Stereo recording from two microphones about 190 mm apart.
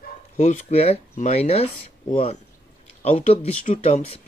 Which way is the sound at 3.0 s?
35° left (ahead or behind).